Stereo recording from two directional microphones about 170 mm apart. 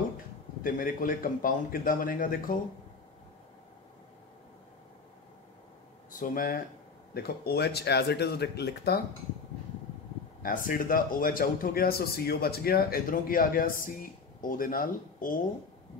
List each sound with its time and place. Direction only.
0.7 s a man's voice: 55° left (ahead or behind)
6.1 s a man's voice: 55° left (ahead or behind)
7.2 s speech: 65° left (ahead or behind)
10.4 s a man's voice: 55° left (ahead or behind)